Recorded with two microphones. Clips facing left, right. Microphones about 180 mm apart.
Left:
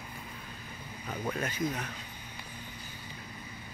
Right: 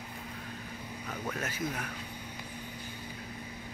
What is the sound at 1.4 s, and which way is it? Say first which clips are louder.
Speech: left 3 dB; 5° right (ahead or behind).